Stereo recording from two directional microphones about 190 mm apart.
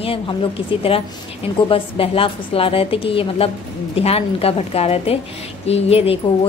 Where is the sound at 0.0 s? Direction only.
30° left (ahead or behind).